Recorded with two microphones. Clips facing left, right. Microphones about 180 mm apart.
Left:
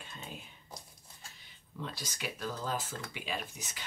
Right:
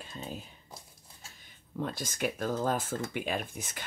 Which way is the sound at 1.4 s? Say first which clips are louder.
Right 8 dB; 50° right (ahead or behind).